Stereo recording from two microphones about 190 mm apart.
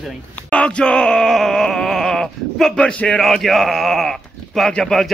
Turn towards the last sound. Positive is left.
turn(degrees=0)  # may be behind; listen again after turning